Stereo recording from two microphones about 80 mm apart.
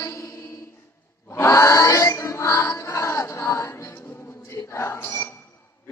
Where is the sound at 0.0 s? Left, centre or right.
Left.